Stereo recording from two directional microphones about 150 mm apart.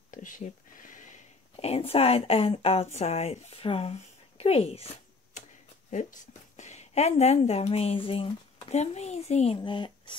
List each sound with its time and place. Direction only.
0.1 s speech: 60° left (ahead or behind); by 3.9 s 40° left (ahead or behind)
4.4 s a sound: 40° left (ahead or behind)
5.9 s speech: 55° left (ahead or behind)
9.6 s speech: 30° left (ahead or behind)